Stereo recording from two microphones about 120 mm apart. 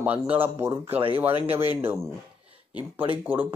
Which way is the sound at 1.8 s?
20° right (ahead or behind).